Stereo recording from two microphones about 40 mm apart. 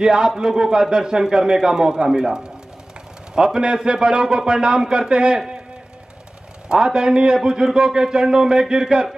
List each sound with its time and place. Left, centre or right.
0.0 s a man's voice: centre
6.7 s a man's voice: centre